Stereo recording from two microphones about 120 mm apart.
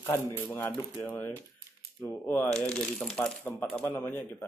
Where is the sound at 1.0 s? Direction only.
20° left (ahead or behind).